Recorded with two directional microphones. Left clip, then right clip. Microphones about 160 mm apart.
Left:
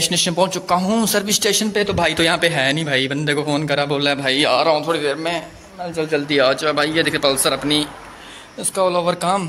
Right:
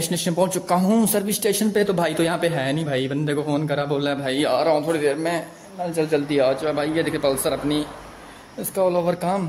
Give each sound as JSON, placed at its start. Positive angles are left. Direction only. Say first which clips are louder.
{"t": 0.0, "sound": "a man's voice", "louder": "left 5 dB", "side_deg": -10}
{"t": 0.5, "sound": "a man's voice", "louder": "left 2 dB", "side_deg": -30}
{"t": 1.0, "sound": "a man's voice", "louder": "left 4 dB", "side_deg": -10}
{"t": 4.7, "sound": "a man's voice", "louder": "left 2 dB", "side_deg": -20}
{"t": 6.2, "sound": "speech", "louder": "left 4 dB", "side_deg": -5}
{"t": 8.7, "sound": "a man's voice", "louder": "left 3 dB", "side_deg": -15}